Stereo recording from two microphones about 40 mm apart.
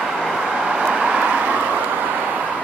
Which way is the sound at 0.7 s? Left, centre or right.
Right.